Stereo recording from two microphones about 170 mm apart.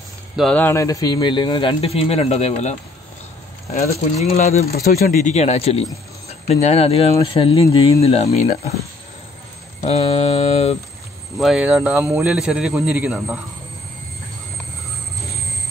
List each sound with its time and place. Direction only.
0.4 s speech: 5° left (ahead or behind); by 4.7 s 40° left (ahead or behind)
4.7 s speech: 60° left (ahead or behind); by 8.5 s 40° left (ahead or behind)
9.8 s speech: 35° left (ahead or behind)
11.3 s a man's voice: centre (ahead or behind)